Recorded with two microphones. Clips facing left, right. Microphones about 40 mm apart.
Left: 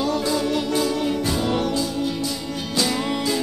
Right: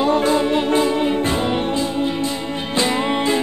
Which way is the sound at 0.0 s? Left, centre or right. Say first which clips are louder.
Right 6 dB; right.